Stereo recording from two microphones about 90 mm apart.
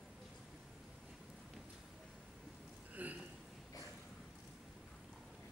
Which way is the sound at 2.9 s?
15° right (ahead or behind).